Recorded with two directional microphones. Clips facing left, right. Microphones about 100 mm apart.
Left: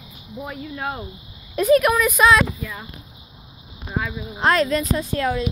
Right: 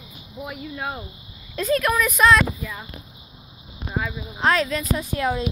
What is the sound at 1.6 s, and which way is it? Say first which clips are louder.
Speech: left 6 dB; 15° left (ahead or behind).